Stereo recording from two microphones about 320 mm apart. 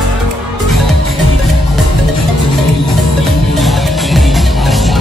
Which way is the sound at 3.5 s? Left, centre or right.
Centre.